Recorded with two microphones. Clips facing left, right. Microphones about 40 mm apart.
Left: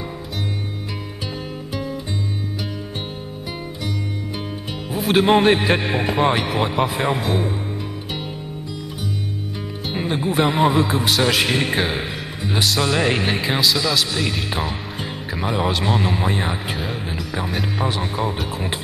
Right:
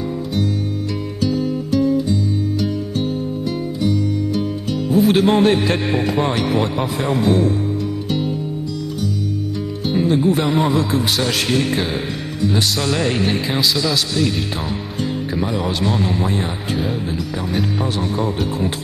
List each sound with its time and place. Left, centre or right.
1.2 s music: centre
4.3 s music: left
4.9 s speech: centre
5.2 s a man's voice: left
9.9 s music: left
10.4 s a man's voice: centre
11.5 s speech: left
12.5 s speech: centre
13.6 s speech: centre
15.8 s a man's voice: centre
16.4 s speech: centre
17.8 s speech: centre